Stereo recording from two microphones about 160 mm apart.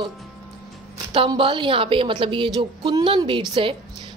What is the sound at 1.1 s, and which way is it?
A woman's voice, 35° right (ahead or behind).